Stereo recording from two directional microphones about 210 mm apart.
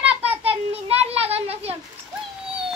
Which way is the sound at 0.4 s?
25° right (ahead or behind).